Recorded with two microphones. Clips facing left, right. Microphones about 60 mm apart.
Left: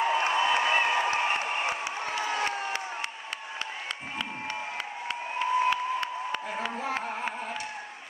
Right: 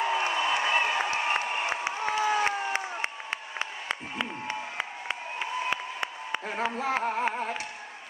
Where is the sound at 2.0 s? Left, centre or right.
Centre.